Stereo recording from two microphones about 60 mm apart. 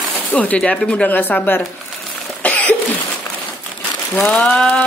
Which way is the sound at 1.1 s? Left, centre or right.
Left.